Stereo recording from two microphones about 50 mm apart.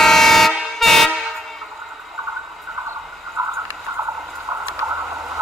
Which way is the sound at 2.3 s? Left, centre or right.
Centre.